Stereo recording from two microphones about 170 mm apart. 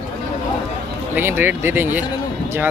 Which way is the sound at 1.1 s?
10° right (ahead or behind).